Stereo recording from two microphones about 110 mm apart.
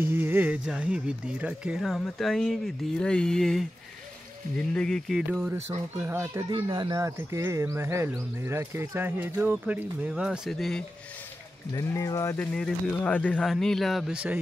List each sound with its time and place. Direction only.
0.0 s speech: 20° right (ahead or behind); by 5.4 s 5° left (ahead or behind)
5.9 s speech: 20° right (ahead or behind)
6.5 s speech: 40° right (ahead or behind)
7.1 s speech: 25° right (ahead or behind); by 10.8 s centre (ahead or behind)
11.7 s speech: 30° left (ahead or behind)
12.4 s speech: 10° left (ahead or behind)